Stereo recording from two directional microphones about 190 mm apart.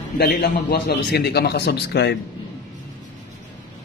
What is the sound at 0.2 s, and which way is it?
A man's voice, 55° left (ahead or behind).